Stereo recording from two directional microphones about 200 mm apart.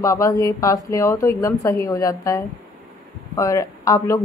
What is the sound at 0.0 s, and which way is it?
Speech, 15° left (ahead or behind).